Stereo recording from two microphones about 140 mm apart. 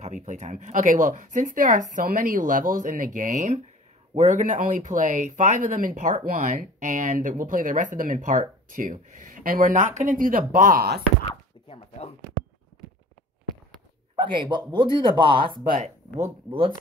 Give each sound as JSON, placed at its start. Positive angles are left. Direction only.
{"t": 0.0, "sound": "speech", "side_deg": -60}
{"t": 11.2, "sound": "a sound", "side_deg": 40}
{"t": 14.2, "sound": "speech", "side_deg": -35}
{"t": 15.7, "sound": "speech", "side_deg": -60}